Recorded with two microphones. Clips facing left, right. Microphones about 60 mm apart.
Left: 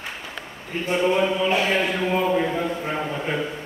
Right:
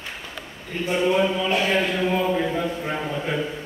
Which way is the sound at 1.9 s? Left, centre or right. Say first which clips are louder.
Even; centre.